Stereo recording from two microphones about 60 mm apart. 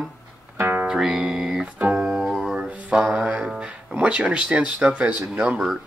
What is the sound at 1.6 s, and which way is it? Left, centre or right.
Music, right.